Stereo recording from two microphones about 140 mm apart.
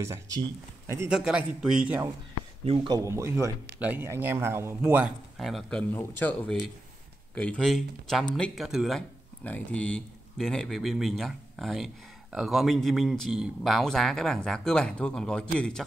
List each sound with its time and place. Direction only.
0.0 s speech: 25° right (ahead or behind)
1.0 s speech: 5° right (ahead or behind)
2.6 s speech: 40° right (ahead or behind)
2.9 s speech: 20° right (ahead or behind)
5.4 s speech: centre (ahead or behind)
5.9 s speech: 15° left (ahead or behind)
7.3 s speech: 5° left (ahead or behind)